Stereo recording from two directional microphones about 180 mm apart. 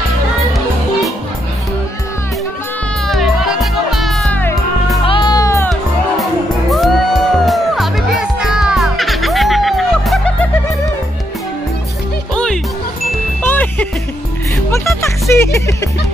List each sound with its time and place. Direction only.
3.1 s music: centre (ahead or behind)
5.0 s music: 25° left (ahead or behind)
6.7 s music: centre (ahead or behind)
13.4 s music: 10° left (ahead or behind)